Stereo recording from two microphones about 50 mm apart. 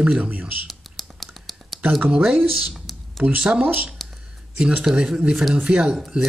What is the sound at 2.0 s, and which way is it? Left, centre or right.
Speech, right.